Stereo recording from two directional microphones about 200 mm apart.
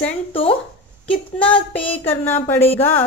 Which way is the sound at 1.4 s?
25° left (ahead or behind).